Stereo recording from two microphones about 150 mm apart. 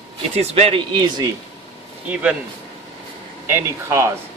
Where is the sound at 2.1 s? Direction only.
10° right (ahead or behind).